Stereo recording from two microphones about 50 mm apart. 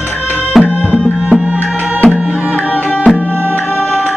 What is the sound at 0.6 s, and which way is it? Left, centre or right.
Music, left.